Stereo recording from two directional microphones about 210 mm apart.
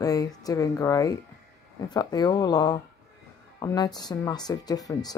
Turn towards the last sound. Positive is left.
turn(degrees=15)  # may be behind; listen again after turning